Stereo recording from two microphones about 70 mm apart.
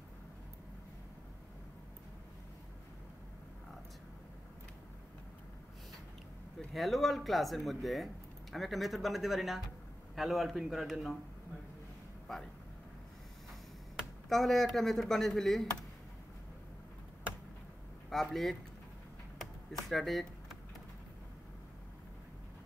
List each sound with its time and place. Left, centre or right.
6.7 s speech: centre
14.3 s speech: centre
18.1 s speech: centre
19.9 s speech: centre